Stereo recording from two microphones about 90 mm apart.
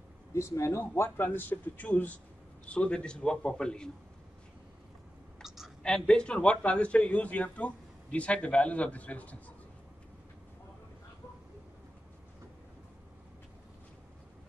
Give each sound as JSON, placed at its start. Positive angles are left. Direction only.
{"t": 0.3, "sound": "speech", "side_deg": 30}
{"t": 5.8, "sound": "speech", "side_deg": 10}